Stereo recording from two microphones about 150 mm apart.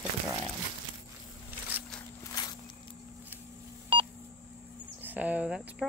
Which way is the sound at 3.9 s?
35° right (ahead or behind).